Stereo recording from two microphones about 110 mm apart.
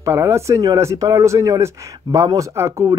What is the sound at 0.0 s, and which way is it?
Speech, 25° right (ahead or behind).